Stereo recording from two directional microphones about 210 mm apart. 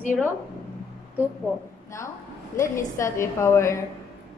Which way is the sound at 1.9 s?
15° left (ahead or behind).